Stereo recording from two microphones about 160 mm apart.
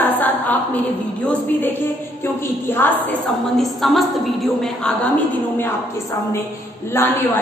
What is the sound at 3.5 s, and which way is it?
A woman's voice, centre (ahead or behind).